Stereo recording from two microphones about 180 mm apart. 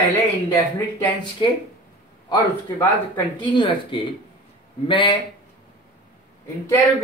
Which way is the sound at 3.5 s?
25° left (ahead or behind).